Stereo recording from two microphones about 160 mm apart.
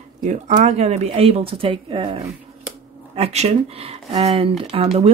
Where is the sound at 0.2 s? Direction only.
50° right (ahead or behind).